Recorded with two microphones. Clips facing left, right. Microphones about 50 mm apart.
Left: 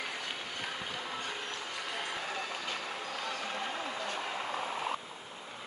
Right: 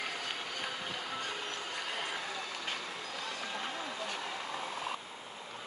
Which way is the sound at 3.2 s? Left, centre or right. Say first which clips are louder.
Left 2 dB; centre.